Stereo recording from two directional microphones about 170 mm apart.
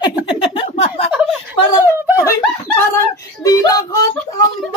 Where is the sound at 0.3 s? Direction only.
35° left (ahead or behind).